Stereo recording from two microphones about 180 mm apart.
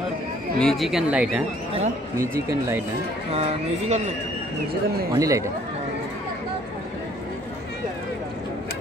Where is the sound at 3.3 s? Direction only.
40° right (ahead or behind).